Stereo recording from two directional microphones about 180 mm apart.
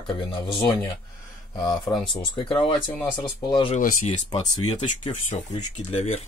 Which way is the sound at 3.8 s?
45° left (ahead or behind).